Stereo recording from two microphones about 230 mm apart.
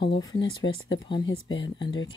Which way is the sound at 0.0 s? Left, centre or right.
Centre.